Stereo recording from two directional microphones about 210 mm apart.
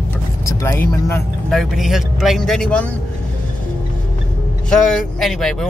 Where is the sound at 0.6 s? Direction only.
15° left (ahead or behind).